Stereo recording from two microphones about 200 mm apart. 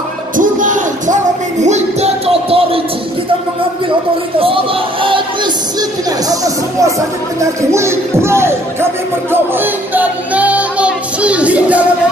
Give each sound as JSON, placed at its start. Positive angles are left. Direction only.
{"t": 0.4, "sound": "music", "side_deg": -40}
{"t": 5.0, "sound": "music", "side_deg": -25}
{"t": 7.3, "sound": "speech", "side_deg": -15}
{"t": 9.3, "sound": "music", "side_deg": -10}